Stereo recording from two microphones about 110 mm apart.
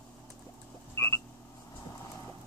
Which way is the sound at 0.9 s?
25° left (ahead or behind).